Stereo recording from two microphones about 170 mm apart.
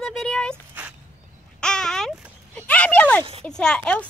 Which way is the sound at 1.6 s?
5° left (ahead or behind).